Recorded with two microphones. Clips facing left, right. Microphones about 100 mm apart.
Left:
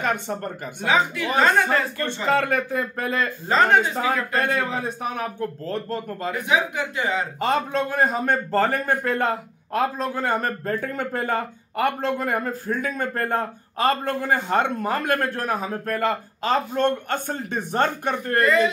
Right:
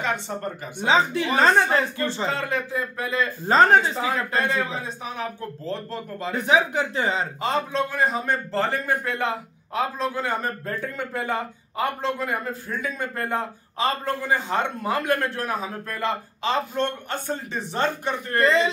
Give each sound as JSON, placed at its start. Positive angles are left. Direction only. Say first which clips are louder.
{"t": 0.0, "sound": "a man's voice", "louder": "left 2 dB", "side_deg": 50}
{"t": 0.8, "sound": "speech", "louder": "right 1 dB", "side_deg": -30}
{"t": 2.0, "sound": "speech", "louder": "left 4 dB", "side_deg": 60}
{"t": 3.5, "sound": "speech", "louder": "right 3 dB", "side_deg": -35}
{"t": 3.9, "sound": "a man's voice", "louder": "left 1 dB", "side_deg": 50}
{"t": 6.3, "sound": "speech", "louder": "right 3 dB", "side_deg": -35}
{"t": 7.3, "sound": "a man's voice", "louder": "left 2 dB", "side_deg": 50}
{"t": 18.4, "sound": "speech", "louder": "even", "side_deg": -30}